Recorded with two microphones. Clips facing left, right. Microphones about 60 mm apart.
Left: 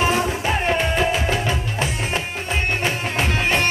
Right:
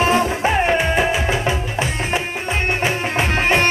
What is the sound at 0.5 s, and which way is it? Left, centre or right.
Music, centre.